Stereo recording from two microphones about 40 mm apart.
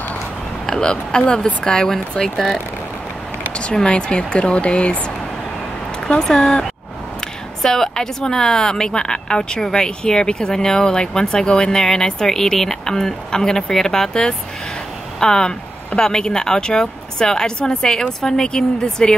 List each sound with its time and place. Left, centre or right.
0.7 s a woman's voice: centre
3.5 s speech: left
6.0 s a woman's voice: centre